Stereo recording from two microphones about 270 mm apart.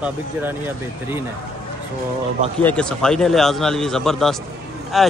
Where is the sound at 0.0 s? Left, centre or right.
Centre.